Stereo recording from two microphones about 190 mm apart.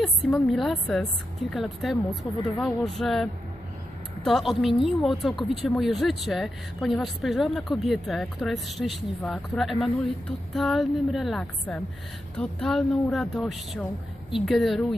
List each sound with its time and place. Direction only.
0.0 s speech: centre (ahead or behind)
2.0 s speech: 25° left (ahead or behind)
2.5 s speech: centre (ahead or behind)